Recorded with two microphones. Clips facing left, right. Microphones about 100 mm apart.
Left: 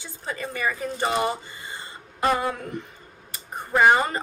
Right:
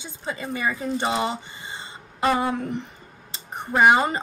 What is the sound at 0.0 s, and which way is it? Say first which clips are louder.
Speech: right 1 dB; 20° right (ahead or behind).